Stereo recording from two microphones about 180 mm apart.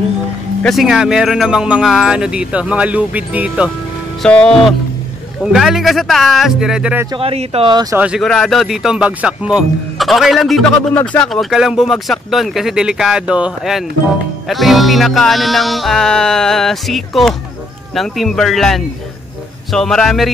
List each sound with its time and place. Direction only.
0.6 s speech: centre (ahead or behind)
4.2 s speech: 5° left (ahead or behind)
7.1 s speech: 30° right (ahead or behind)
8.0 s speech: centre (ahead or behind)